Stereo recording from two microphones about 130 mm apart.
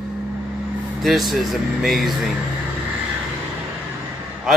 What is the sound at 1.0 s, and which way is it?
Speech, centre (ahead or behind).